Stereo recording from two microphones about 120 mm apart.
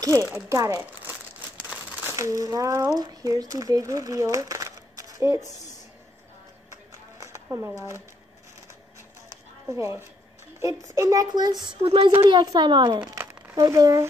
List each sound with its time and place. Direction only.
0.0 s speech: 25° right (ahead or behind)
1.7 s crumpling: 15° right (ahead or behind)
2.1 s speech: 30° right (ahead or behind)
6.7 s a sound: 25° right (ahead or behind)
9.7 s a woman's voice: 25° right (ahead or behind)
11.8 s speech: 50° right (ahead or behind)
12.2 s a child's voice: 35° right (ahead or behind)